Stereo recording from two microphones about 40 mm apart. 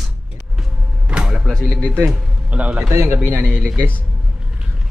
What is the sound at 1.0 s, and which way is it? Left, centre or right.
Music, right.